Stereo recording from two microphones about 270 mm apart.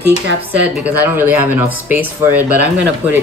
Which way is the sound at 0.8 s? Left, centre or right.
Centre.